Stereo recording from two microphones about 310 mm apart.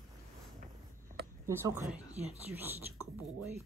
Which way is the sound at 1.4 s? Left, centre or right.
Centre.